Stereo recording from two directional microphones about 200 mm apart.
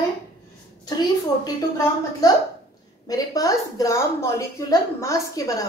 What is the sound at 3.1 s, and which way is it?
A woman's voice, 20° left (ahead or behind).